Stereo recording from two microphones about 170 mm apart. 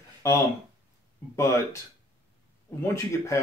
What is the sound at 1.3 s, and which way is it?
Speech, 15° left (ahead or behind).